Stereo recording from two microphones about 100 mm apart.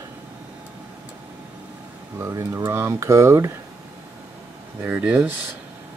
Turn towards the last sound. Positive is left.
turn(degrees=-15)  # may be behind; listen again after turning